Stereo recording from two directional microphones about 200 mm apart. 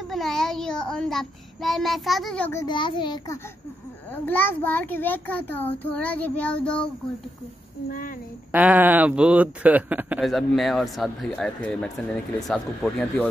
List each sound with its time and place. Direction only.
0.1 s speech: centre (ahead or behind)
2.6 s a child's voice: 25° left (ahead or behind)
4.1 s a child's voice: 10° left (ahead or behind)
8.5 s speech: 10° right (ahead or behind)